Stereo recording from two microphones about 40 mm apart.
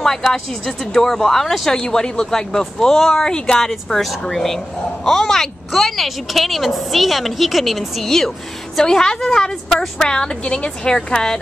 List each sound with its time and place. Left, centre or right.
0.0 s speech: centre
3.5 s speech: centre
8.7 s speech: centre